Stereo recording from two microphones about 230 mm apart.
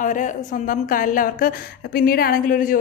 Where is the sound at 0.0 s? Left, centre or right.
Left.